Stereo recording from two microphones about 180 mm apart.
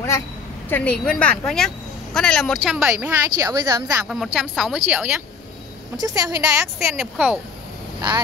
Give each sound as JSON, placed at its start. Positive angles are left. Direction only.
{"t": 0.7, "sound": "a woman's voice", "side_deg": 10}
{"t": 3.3, "sound": "a woman's voice", "side_deg": -20}
{"t": 4.1, "sound": "a woman's voice", "side_deg": 0}
{"t": 5.9, "sound": "a woman's voice", "side_deg": -20}
{"t": 6.5, "sound": "a woman's voice", "side_deg": 0}